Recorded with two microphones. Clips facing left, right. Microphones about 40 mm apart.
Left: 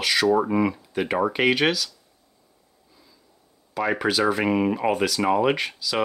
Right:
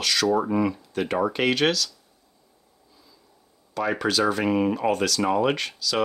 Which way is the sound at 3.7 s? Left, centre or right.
Centre.